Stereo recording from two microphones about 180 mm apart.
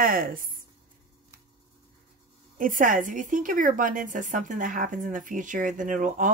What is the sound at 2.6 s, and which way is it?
A woman's voice, 50° right (ahead or behind).